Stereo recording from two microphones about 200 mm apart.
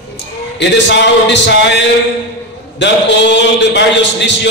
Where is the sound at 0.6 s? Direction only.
60° left (ahead or behind).